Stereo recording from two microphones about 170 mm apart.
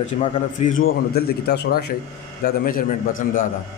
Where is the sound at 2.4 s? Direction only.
55° left (ahead or behind).